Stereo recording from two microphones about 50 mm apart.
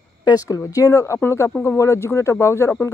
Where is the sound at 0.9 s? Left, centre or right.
Left.